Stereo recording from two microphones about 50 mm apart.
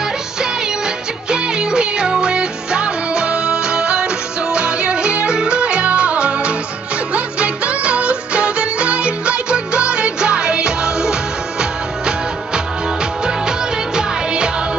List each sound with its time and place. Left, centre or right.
1.3 s music: centre
13.5 s music: centre